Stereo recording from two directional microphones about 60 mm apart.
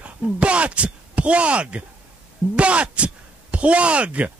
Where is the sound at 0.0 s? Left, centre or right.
Right.